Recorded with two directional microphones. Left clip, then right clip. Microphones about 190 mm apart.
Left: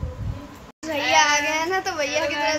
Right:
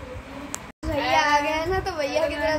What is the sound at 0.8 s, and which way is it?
Speech, 15° left (ahead or behind).